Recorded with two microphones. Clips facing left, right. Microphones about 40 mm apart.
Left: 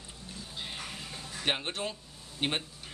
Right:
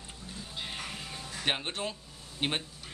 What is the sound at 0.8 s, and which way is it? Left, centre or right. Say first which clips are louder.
Music: right 1 dB; centre.